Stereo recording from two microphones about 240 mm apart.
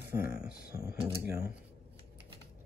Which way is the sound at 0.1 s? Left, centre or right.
Centre.